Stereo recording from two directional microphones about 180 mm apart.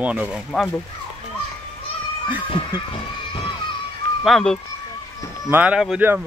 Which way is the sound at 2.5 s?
30° left (ahead or behind).